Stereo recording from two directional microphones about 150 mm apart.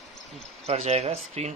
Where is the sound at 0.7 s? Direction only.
45° right (ahead or behind).